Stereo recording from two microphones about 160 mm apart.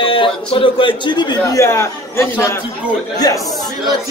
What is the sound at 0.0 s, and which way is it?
Speech, 35° left (ahead or behind).